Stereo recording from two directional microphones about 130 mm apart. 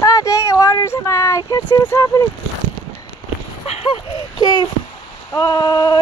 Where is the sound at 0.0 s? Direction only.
25° left (ahead or behind).